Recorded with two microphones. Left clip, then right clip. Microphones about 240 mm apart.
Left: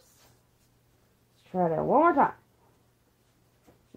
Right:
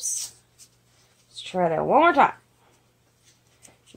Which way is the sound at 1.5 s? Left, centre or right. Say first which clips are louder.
Right 4 dB; centre.